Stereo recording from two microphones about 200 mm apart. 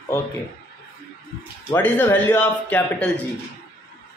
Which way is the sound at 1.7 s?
10° left (ahead or behind).